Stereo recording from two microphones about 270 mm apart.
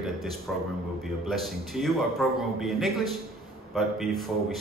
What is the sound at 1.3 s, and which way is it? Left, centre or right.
A man's voice, centre.